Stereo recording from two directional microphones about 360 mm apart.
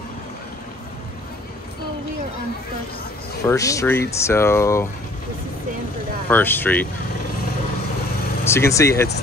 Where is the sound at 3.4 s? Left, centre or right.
Centre.